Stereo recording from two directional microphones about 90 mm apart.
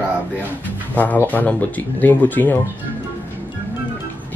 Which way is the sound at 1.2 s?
20° left (ahead or behind).